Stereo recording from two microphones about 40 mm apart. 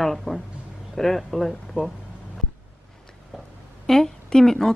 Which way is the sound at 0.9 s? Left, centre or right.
Centre.